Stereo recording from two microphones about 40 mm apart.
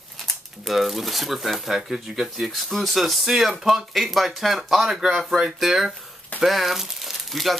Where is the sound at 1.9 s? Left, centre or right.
Centre.